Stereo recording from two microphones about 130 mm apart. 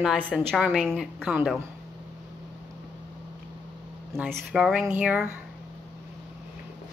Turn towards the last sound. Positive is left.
turn(degrees=-10)  # may be behind; listen again after turning